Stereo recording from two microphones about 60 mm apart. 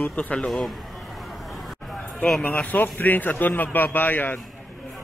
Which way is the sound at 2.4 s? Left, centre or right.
Left.